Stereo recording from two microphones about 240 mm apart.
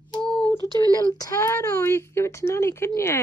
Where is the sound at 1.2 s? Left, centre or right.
Centre.